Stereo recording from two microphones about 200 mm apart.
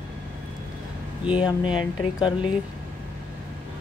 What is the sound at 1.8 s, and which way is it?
Speech, 25° left (ahead or behind).